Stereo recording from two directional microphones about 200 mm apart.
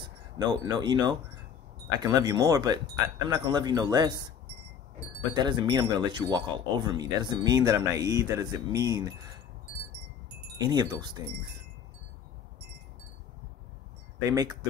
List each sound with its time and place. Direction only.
0.0 s speech: 20° right (ahead or behind)
5.3 s speech: 20° right (ahead or behind)
10.6 s speech: 20° right (ahead or behind)
14.2 s speech: 20° right (ahead or behind)